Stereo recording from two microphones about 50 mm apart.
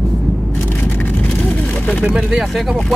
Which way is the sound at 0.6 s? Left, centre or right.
Left.